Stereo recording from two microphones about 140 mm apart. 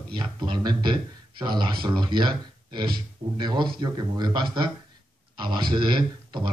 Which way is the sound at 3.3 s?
30° right (ahead or behind).